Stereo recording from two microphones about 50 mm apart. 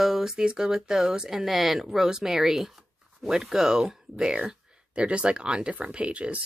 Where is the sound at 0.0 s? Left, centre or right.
Centre.